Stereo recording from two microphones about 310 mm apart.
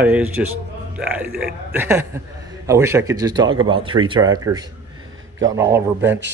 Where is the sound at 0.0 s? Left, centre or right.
Centre.